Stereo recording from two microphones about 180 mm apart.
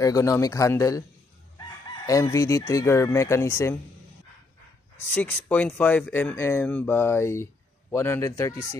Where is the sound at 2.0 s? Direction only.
20° left (ahead or behind).